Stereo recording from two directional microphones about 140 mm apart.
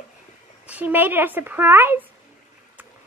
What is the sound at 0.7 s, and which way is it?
A child's voice, 10° right (ahead or behind).